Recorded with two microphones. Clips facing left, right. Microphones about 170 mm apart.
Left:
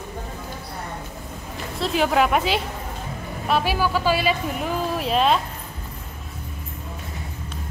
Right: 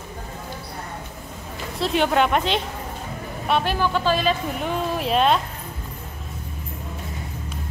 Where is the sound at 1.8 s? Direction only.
Centre (ahead or behind).